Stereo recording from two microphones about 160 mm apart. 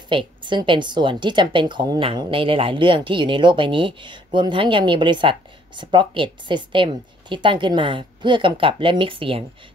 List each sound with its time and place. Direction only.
0.1 s speech: 30° right (ahead or behind)